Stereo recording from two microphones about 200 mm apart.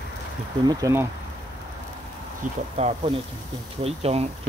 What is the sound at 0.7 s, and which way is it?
Speech, 15° right (ahead or behind).